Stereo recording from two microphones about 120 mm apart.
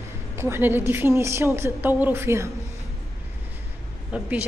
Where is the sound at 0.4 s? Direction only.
20° right (ahead or behind).